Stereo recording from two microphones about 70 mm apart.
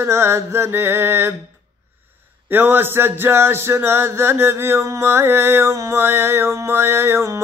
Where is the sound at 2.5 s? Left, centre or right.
Right.